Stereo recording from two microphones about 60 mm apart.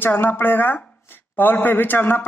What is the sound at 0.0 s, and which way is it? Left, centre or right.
A man's voice, left.